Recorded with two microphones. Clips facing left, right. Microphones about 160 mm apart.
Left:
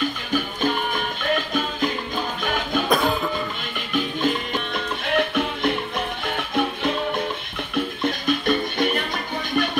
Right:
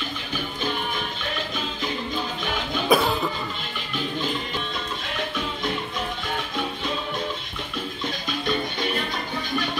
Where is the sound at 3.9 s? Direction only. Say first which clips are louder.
Left 5 dB; 55° left (ahead or behind).